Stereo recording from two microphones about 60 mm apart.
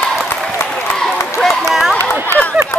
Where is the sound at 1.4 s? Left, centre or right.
Centre.